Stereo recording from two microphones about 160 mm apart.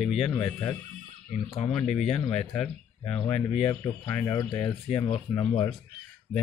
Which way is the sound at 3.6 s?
25° left (ahead or behind).